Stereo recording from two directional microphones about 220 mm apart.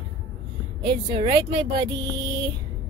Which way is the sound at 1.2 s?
20° right (ahead or behind).